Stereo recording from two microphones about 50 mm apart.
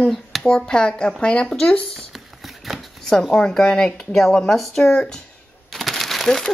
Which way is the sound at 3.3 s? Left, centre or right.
Centre.